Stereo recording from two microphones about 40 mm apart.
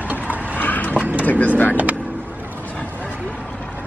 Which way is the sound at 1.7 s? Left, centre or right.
Right.